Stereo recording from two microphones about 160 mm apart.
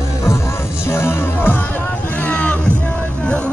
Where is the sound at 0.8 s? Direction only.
15° left (ahead or behind).